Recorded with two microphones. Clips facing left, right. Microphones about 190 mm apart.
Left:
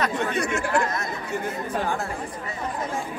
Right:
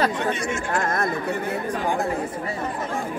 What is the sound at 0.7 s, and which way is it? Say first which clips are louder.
Chatter: right 1 dB; 50° right (ahead or behind).